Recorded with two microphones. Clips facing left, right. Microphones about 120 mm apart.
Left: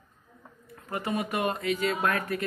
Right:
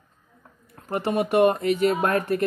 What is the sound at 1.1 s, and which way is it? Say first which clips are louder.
Speech: right 10 dB; 65° right (ahead or behind).